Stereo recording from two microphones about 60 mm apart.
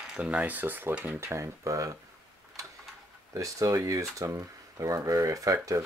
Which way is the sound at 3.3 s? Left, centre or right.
Right.